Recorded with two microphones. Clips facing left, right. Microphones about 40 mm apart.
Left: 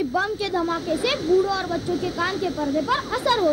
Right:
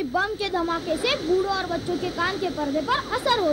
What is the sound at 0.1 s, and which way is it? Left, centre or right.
Speech, right.